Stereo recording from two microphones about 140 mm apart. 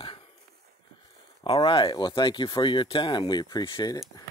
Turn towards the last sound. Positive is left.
turn(degrees=35)  # may be behind; listen again after turning